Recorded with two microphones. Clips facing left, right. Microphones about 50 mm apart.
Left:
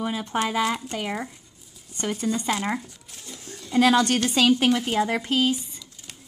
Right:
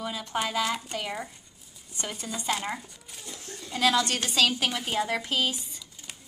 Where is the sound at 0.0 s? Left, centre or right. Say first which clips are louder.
Left 5 dB; centre.